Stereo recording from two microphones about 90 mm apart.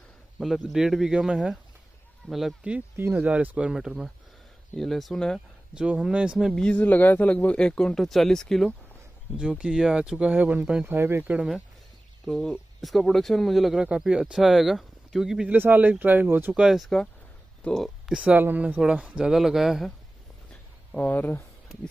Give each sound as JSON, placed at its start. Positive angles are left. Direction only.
{"t": 0.4, "sound": "speech", "side_deg": 0}
{"t": 3.0, "sound": "speech", "side_deg": -15}
{"t": 5.8, "sound": "speech", "side_deg": -10}
{"t": 6.5, "sound": "speech", "side_deg": 10}
{"t": 9.4, "sound": "speech", "side_deg": -10}
{"t": 10.9, "sound": "speech", "side_deg": -25}
{"t": 12.3, "sound": "speech", "side_deg": 5}
{"t": 15.5, "sound": "speech", "side_deg": -20}
{"t": 16.5, "sound": "speech", "side_deg": -5}
{"t": 18.2, "sound": "speech", "side_deg": -20}
{"t": 18.8, "sound": "speech", "side_deg": -10}
{"t": 20.9, "sound": "speech", "side_deg": 15}